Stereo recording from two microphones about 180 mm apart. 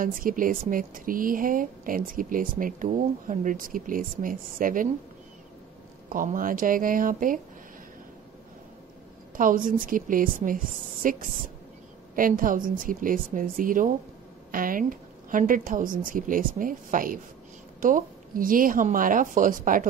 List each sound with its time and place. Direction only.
0.0 s speech: 50° right (ahead or behind)
6.0 s speech: 50° right (ahead or behind)
9.4 s speech: 50° right (ahead or behind)